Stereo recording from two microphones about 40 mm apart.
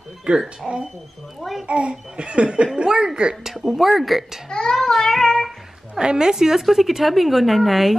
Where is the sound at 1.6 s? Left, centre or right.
Right.